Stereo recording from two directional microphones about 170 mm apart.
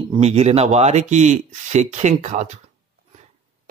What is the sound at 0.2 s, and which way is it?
Speech, 40° right (ahead or behind).